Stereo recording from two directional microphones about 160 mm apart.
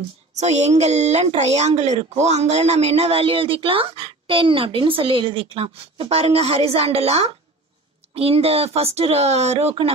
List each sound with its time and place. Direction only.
0.3 s speech: 45° right (ahead or behind)